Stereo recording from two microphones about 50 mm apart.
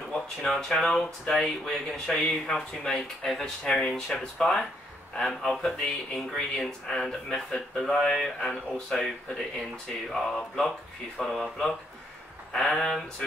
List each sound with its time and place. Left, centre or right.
0.1 s speech: centre
9.0 s speech: centre
12.5 s speech: centre